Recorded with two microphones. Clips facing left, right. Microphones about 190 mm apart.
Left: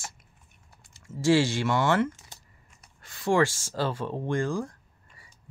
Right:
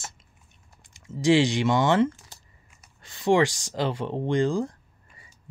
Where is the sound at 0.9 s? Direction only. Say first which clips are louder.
Right 2 dB; 20° right (ahead or behind).